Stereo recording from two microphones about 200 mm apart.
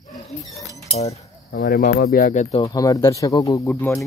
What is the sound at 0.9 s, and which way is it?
Cutlery, 35° left (ahead or behind).